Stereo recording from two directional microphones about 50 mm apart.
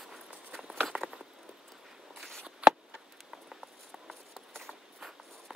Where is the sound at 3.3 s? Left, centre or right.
Centre.